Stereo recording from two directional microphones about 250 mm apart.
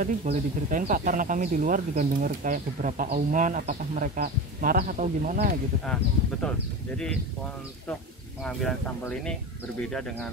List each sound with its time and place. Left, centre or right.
0.0 s speech: right
8.5 s speech: centre